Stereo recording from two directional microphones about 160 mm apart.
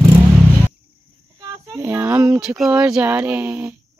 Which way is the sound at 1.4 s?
20° right (ahead or behind).